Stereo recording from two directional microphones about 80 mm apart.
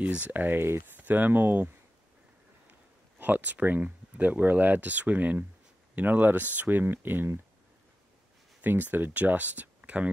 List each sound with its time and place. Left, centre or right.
0.0 s speech: centre
3.2 s speech: right
8.5 s speech: right